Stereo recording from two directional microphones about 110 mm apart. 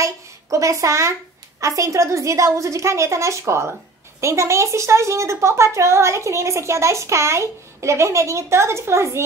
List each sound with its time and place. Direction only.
0.0 s a woman's voice: 30° right (ahead or behind)